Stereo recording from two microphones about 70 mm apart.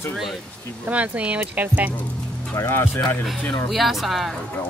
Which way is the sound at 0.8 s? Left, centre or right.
Right.